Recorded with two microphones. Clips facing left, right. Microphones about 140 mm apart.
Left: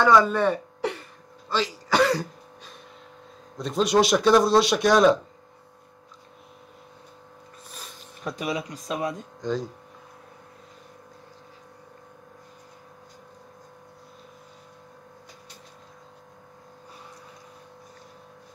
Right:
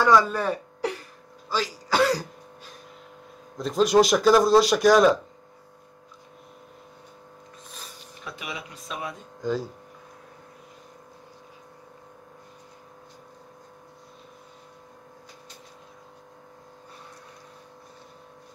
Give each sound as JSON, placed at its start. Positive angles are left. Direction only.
{"t": 0.0, "sound": "speech", "side_deg": -5}
{"t": 3.5, "sound": "speech", "side_deg": 0}
{"t": 8.2, "sound": "speech", "side_deg": 40}
{"t": 9.4, "sound": "speech", "side_deg": -5}